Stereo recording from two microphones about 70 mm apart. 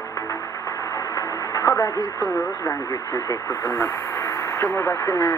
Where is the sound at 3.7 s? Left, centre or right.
Left.